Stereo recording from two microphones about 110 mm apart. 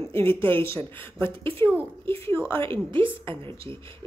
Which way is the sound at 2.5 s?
55° right (ahead or behind).